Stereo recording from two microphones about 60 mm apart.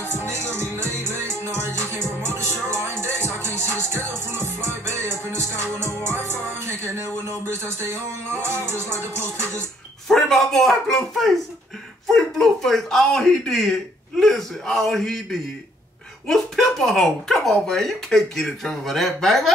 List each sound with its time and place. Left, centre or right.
0.2 s music: right
10.0 s a sound: centre
16.3 s speech: centre